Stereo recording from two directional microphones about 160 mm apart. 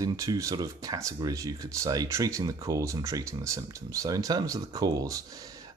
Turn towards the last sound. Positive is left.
turn(degrees=-20)  # may be behind; listen again after turning